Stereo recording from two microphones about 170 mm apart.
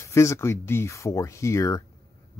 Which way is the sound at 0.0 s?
15° left (ahead or behind).